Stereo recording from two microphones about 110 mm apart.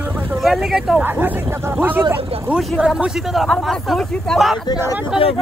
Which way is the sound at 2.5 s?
5° right (ahead or behind).